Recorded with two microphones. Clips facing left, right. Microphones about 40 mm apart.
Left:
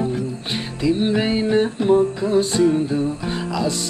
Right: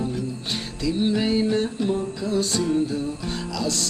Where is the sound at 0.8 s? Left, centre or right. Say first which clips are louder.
Left 4 dB; left.